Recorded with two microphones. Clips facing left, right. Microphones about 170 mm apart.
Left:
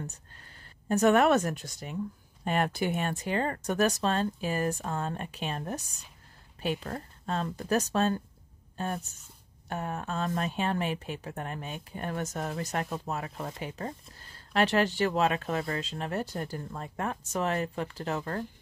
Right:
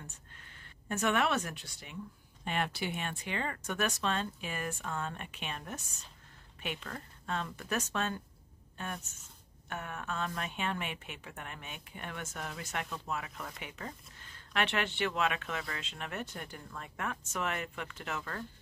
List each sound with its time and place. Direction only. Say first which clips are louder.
0.8 s a woman's voice: left 9 dB; 40° left (ahead or behind)